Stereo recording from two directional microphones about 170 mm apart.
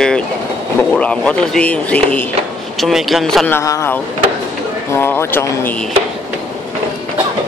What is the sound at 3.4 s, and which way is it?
Speech, 15° left (ahead or behind).